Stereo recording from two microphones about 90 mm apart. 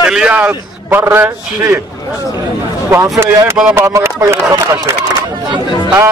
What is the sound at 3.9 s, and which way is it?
Speech, 30° right (ahead or behind).